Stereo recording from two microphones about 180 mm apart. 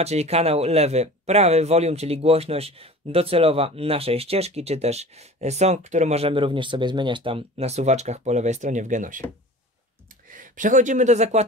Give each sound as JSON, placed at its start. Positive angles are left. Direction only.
{"t": 0.0, "sound": "speech", "side_deg": -35}
{"t": 10.3, "sound": "speech", "side_deg": -45}